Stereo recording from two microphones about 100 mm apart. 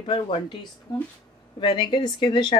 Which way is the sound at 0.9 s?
40° left (ahead or behind).